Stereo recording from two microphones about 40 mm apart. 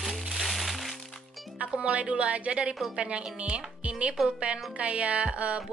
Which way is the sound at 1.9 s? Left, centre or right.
Right.